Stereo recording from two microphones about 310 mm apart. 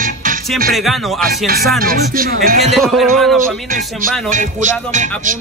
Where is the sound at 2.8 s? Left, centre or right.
Centre.